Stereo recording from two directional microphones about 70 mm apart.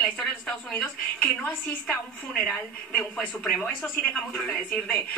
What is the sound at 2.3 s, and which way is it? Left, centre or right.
Speech, centre.